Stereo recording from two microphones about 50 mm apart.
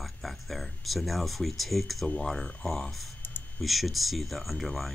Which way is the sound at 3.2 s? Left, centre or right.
Left.